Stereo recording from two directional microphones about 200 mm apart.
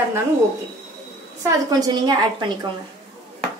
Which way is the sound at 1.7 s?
20° right (ahead or behind).